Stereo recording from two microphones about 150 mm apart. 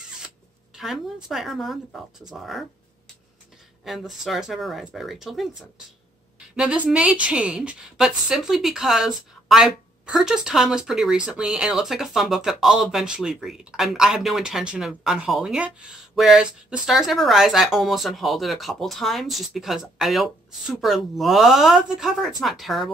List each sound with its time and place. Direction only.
0.7 s a woman's voice: centre (ahead or behind)
3.8 s a woman's voice: centre (ahead or behind)
6.5 s a woman's voice: 5° right (ahead or behind)